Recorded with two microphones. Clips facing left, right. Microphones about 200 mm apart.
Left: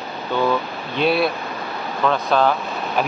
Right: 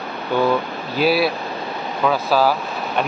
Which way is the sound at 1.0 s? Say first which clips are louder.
Right 1 dB; 5° right (ahead or behind).